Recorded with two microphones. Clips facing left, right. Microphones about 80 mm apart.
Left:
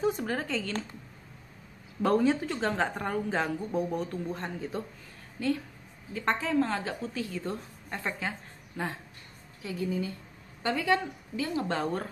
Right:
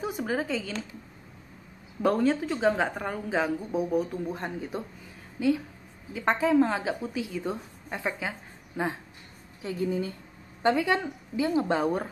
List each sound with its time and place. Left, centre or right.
0.0 s a woman's voice: centre
2.0 s a woman's voice: centre
9.6 s a woman's voice: right